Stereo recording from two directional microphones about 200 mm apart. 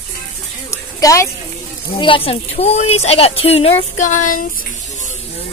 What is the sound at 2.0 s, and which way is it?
A woman's voice, 25° left (ahead or behind).